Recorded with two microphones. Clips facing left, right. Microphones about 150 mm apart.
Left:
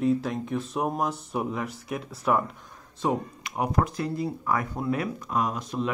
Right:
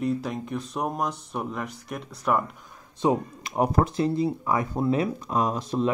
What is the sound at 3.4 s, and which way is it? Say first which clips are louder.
Speech: right 4 dB; 30° right (ahead or behind).